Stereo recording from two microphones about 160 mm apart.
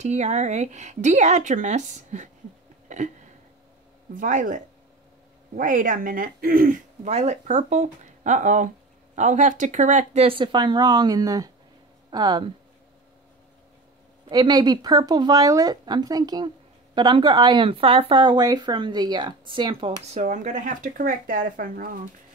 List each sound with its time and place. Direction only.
0.0 s speech: 45° right (ahead or behind)
2.9 s a sound: 50° right (ahead or behind)
4.1 s speech: 55° right (ahead or behind)
7.1 s speech: 45° right (ahead or behind); by 12.4 s 25° right (ahead or behind)
14.3 s speech: 25° right (ahead or behind)
20.2 s speech: 50° right (ahead or behind)